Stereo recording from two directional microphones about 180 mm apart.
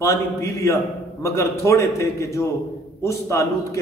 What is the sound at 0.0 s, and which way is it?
A man's voice, 15° left (ahead or behind).